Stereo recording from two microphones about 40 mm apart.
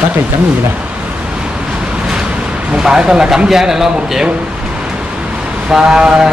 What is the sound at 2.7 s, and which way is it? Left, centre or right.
A man's voice, centre.